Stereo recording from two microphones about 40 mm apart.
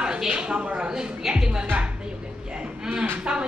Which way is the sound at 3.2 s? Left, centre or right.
Right.